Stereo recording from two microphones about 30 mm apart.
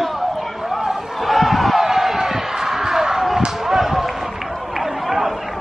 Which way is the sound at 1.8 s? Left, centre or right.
Centre.